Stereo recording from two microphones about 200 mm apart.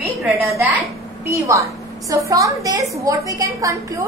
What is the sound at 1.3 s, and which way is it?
A woman's voice, 15° right (ahead or behind).